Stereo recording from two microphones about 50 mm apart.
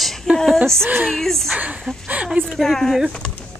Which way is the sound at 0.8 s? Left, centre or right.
Right.